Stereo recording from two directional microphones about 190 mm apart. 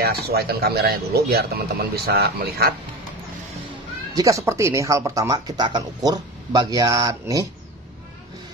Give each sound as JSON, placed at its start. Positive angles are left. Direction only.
{"t": 0.0, "sound": "speech", "side_deg": -55}
{"t": 4.1, "sound": "speech", "side_deg": -20}